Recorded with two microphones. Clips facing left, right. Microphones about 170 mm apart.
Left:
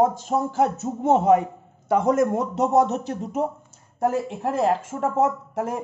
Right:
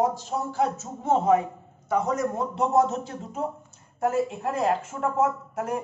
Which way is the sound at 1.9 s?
85° left.